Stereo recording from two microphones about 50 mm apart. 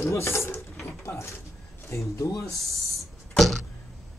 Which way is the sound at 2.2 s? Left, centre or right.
Left.